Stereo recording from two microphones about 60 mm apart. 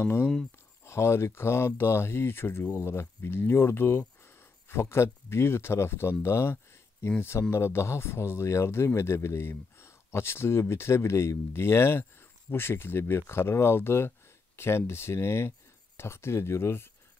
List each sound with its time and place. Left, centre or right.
0.0 s speech: left